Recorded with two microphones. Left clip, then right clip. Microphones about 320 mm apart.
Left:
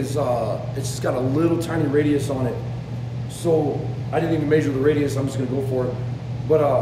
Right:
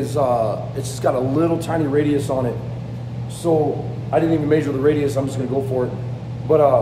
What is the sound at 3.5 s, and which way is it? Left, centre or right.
A man's voice, centre.